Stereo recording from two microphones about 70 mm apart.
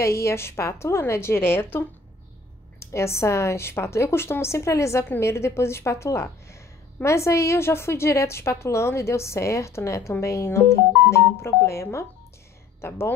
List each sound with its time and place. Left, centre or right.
0.0 s a woman's voice: left